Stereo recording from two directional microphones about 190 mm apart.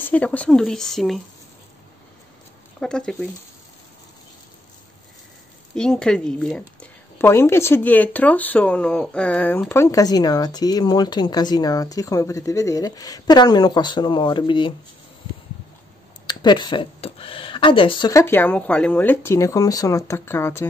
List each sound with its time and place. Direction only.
0.0 s speech: 10° left (ahead or behind)
2.8 s speech: 5° left (ahead or behind)
5.8 s speech: 5° left (ahead or behind); by 14.7 s 25° left (ahead or behind)
16.3 s speech: 25° left (ahead or behind)
18.2 s speech: 10° left (ahead or behind)